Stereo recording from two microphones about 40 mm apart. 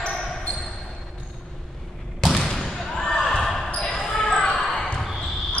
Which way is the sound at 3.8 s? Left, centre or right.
Left.